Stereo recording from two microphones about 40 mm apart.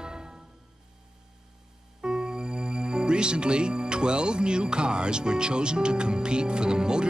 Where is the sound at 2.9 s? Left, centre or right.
Right.